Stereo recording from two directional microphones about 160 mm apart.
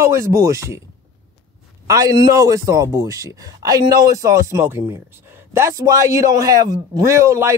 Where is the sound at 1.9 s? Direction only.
20° right (ahead or behind).